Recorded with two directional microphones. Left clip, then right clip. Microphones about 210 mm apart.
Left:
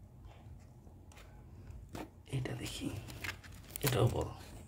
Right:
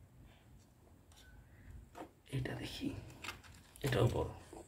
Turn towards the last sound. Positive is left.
turn(degrees=0)  # may be behind; listen again after turning